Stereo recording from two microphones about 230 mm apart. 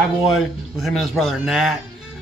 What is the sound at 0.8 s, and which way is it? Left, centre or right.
Speech, centre.